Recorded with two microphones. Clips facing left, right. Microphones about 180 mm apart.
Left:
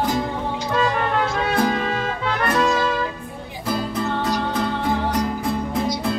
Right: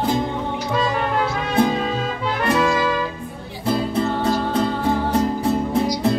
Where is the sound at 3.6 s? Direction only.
30° right (ahead or behind).